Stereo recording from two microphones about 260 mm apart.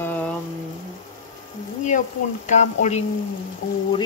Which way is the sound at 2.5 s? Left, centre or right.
Left.